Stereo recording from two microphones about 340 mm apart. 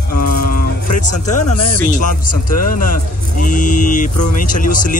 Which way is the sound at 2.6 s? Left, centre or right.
Left.